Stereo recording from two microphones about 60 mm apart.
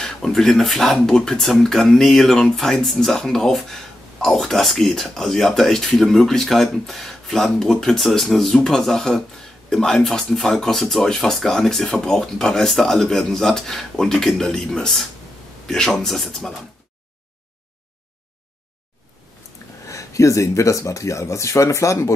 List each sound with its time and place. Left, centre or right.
0.0 s speech: centre
19.9 s speech: left